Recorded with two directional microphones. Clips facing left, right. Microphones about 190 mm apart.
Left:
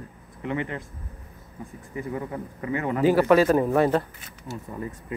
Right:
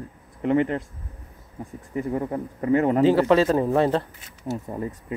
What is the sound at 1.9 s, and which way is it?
Speech, 45° right (ahead or behind).